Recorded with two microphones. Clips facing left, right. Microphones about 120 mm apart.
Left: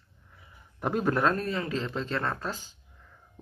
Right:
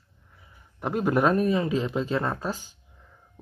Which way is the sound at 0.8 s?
5° right (ahead or behind).